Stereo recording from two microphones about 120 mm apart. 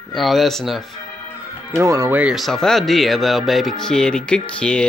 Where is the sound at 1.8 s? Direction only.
30° right (ahead or behind).